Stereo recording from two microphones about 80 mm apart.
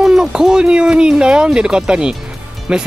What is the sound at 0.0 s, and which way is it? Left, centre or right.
Speech, centre.